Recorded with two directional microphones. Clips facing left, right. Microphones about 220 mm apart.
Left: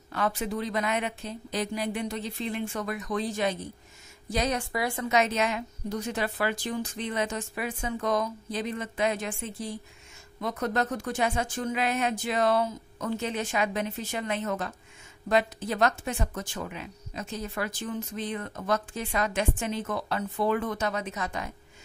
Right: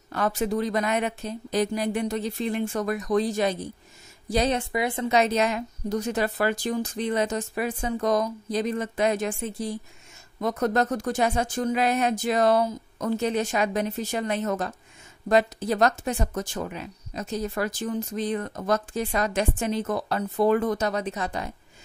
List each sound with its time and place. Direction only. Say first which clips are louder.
0.1 s a woman's voice: right 4 dB; 40° right (ahead or behind)